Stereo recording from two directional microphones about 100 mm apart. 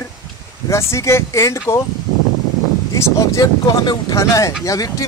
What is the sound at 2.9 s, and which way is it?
Speech, 30° left (ahead or behind).